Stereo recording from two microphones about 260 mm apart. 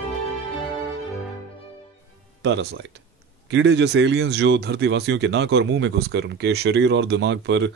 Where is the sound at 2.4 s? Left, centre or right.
Right.